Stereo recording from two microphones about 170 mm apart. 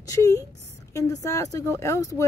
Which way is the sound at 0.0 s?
20° left (ahead or behind).